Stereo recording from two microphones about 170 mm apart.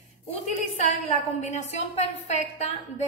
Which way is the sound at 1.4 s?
40° left (ahead or behind).